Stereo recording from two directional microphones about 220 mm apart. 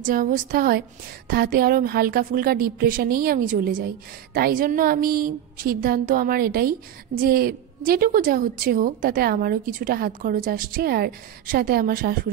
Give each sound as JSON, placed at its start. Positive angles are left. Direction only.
{"t": 0.0, "sound": "a woman's voice", "side_deg": -40}